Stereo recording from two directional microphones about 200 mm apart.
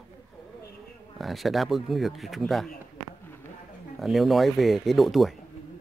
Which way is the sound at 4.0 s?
Centre (ahead or behind).